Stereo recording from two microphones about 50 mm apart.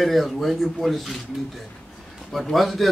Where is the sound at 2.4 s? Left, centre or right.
Centre.